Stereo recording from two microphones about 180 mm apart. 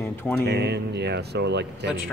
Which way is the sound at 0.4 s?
65° right (ahead or behind).